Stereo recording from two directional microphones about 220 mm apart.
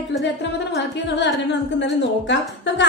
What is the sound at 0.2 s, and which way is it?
A woman's voice, 50° left (ahead or behind).